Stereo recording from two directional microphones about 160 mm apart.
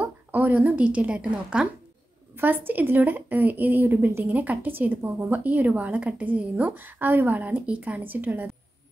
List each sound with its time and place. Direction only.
0.0 s a woman's voice: 10° right (ahead or behind)